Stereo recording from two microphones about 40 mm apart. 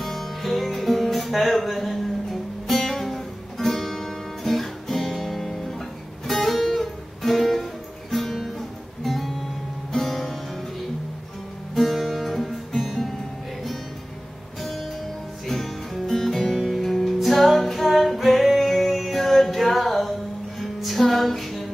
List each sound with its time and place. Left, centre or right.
0.0 s music: centre
11.7 s music: centre
14.6 s music: centre